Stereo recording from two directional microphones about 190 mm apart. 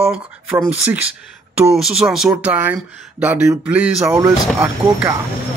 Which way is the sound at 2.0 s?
5° right (ahead or behind).